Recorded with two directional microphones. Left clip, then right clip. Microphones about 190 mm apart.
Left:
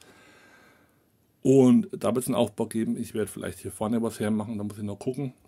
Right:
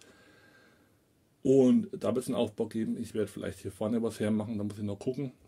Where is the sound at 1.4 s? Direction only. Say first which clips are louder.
Left 4 dB; 40° left (ahead or behind).